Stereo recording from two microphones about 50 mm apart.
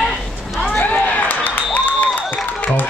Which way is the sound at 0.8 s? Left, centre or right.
Left.